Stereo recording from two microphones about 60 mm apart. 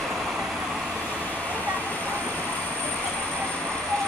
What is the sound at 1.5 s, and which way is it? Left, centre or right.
Vehicle, right.